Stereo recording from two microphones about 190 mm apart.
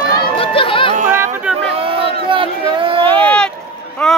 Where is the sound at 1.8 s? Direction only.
30° right (ahead or behind).